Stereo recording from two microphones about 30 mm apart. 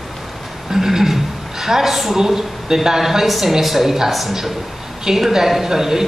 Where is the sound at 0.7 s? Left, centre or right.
Centre.